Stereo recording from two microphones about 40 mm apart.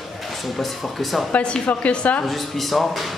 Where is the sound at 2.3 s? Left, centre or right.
Centre.